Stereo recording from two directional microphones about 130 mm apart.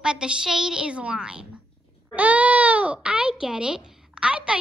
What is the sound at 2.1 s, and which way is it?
Baby cry, 10° right (ahead or behind).